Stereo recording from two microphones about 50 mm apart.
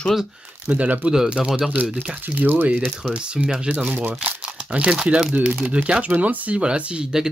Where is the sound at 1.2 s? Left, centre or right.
Centre; by 2.7 s right.